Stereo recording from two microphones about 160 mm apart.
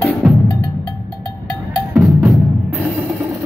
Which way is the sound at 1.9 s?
5° right (ahead or behind).